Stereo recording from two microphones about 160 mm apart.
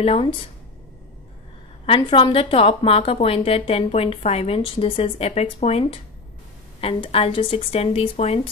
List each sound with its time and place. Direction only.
0.0 s a woman's voice: 35° left (ahead or behind)
1.9 s a woman's voice: 35° left (ahead or behind)